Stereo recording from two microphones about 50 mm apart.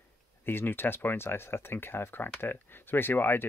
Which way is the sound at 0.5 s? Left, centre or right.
Left.